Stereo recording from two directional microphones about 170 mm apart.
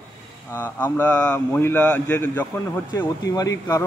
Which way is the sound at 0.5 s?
10° left (ahead or behind).